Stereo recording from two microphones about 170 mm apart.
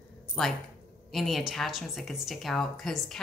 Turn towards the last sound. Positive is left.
turn(degrees=5)  # may be behind; listen again after turning